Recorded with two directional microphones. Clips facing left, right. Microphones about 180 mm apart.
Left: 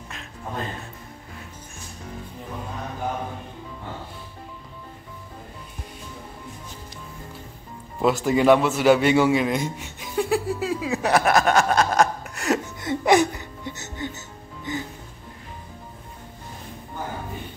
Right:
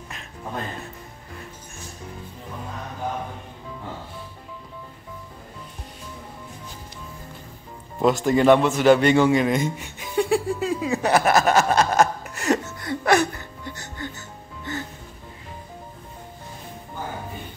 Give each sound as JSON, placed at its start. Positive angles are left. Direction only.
{"t": 8.0, "sound": "a man's voice", "side_deg": 5}
{"t": 12.6, "sound": "music", "side_deg": 20}